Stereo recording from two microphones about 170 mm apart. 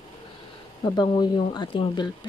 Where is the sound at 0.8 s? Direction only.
25° left (ahead or behind).